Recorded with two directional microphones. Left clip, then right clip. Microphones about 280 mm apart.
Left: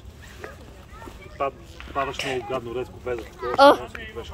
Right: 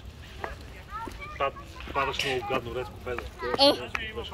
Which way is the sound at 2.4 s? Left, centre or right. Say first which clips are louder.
Left 2 dB; left.